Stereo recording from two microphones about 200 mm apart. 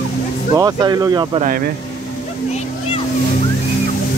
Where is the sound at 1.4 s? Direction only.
45° right (ahead or behind).